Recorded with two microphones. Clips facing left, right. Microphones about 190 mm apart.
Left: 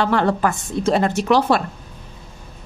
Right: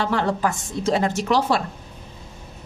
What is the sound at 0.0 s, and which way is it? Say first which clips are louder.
Speech: left 4 dB; 60° left (ahead or behind).